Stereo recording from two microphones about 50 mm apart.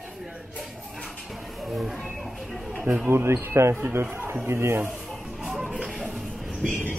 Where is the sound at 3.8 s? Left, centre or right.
Right.